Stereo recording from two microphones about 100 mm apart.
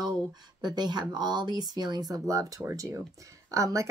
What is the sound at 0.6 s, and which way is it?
Speech, 45° right (ahead or behind).